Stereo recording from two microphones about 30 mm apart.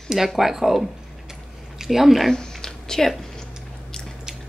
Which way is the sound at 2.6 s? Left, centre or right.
Centre.